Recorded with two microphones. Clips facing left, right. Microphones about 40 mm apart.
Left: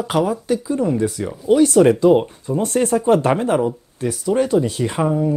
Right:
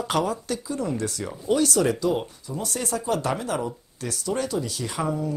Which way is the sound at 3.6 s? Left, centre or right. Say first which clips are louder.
Left 10 dB; left.